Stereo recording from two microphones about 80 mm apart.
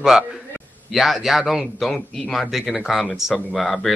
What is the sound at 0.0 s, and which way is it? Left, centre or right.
A man's voice, centre.